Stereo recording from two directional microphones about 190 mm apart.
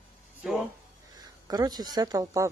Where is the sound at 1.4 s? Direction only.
20° right (ahead or behind).